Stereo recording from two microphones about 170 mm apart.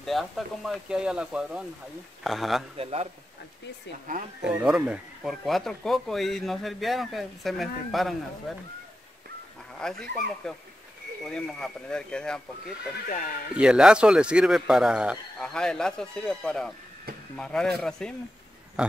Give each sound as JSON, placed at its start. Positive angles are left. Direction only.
{"t": 0.0, "sound": "speech", "side_deg": 0}
{"t": 2.8, "sound": "a man's voice", "side_deg": -35}
{"t": 4.4, "sound": "speech", "side_deg": -5}
{"t": 9.8, "sound": "speech", "side_deg": 5}